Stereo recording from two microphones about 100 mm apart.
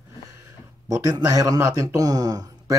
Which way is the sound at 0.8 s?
35° right (ahead or behind).